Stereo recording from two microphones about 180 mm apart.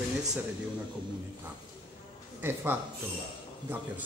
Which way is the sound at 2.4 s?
10° right (ahead or behind).